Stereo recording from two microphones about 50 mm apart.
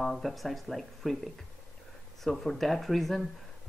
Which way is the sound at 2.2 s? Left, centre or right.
Centre.